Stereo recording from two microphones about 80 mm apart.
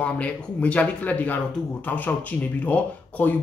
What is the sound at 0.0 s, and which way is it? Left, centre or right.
Speech, centre.